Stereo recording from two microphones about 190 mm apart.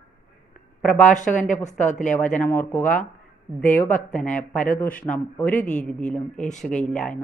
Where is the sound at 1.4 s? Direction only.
40° left (ahead or behind).